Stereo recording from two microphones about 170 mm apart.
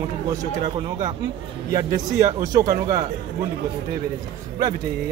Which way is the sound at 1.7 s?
20° right (ahead or behind).